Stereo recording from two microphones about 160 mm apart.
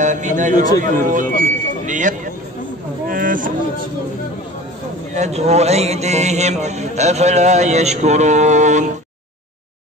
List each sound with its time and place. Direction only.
0.0 s speech: 50° right (ahead or behind)
5.1 s speech: 45° right (ahead or behind)